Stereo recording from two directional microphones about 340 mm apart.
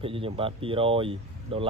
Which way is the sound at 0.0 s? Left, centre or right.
Centre.